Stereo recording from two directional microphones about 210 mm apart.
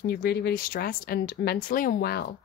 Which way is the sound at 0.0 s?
45° left (ahead or behind).